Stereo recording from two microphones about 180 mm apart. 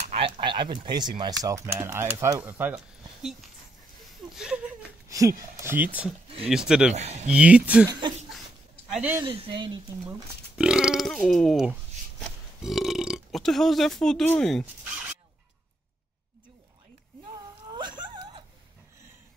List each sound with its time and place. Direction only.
0.4 s speech: 25° right (ahead or behind); by 3.4 s 5° right (ahead or behind)
4.3 s chuckle: 5° right (ahead or behind)
5.6 s speech: 10° right (ahead or behind)
6.2 s speech: 35° right (ahead or behind)
6.5 s speech: 5° right (ahead or behind)
6.9 s speech: 40° right (ahead or behind)
7.2 s speech: 5° right (ahead or behind)
8.9 s a woman's voice: 10° right (ahead or behind)
9.2 s speech: 30° right (ahead or behind)
10.6 s burping: 5° right (ahead or behind)
12.2 s a man's voice: centre (ahead or behind)
17.7 s wail: 25° right (ahead or behind)